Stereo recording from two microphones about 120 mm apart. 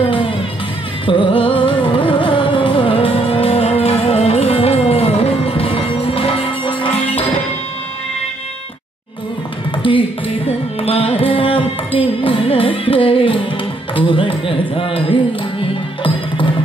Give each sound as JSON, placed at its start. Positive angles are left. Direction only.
{"t": 1.0, "sound": "music", "side_deg": 40}
{"t": 10.8, "sound": "carnatic music", "side_deg": 55}
{"t": 13.9, "sound": "a sound", "side_deg": 45}